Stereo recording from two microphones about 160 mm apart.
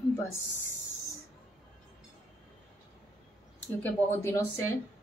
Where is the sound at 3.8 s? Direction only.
15° left (ahead or behind).